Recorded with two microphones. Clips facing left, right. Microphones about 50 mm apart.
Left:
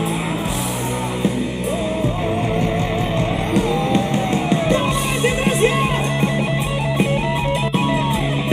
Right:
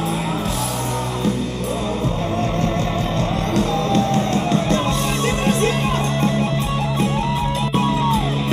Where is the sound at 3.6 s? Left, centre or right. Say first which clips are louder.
Even; centre.